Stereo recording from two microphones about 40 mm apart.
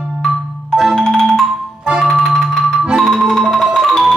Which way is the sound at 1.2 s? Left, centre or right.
Centre.